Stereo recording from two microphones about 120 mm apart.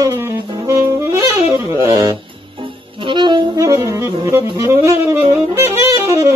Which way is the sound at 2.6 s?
45° right (ahead or behind).